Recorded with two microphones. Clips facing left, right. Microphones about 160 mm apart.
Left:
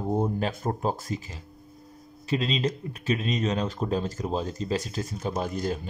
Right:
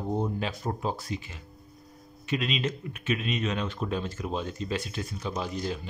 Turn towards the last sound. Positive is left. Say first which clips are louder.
# left 3 dB
turn(degrees=45)  # may be behind; listen again after turning